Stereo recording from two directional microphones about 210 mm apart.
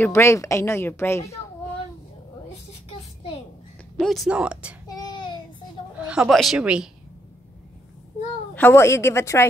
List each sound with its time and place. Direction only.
0.0 s a woman's voice: 10° left (ahead or behind)
4.0 s speech: centre (ahead or behind)
4.8 s child singing: 20° left (ahead or behind)
5.9 s a woman's voice: 5° right (ahead or behind)
8.5 s a woman's voice: 10° left (ahead or behind)